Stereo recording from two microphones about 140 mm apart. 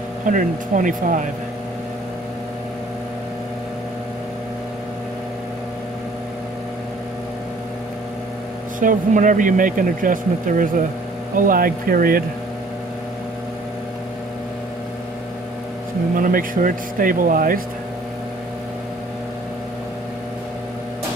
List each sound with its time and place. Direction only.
0.3 s speech: 70° right (ahead or behind)
8.7 s speech: 70° right (ahead or behind)
11.3 s speech: 90° right
16.2 s speech: 85° right